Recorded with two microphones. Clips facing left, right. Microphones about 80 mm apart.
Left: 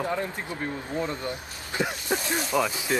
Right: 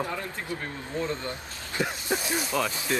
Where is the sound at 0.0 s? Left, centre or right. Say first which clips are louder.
Left 3 dB; left.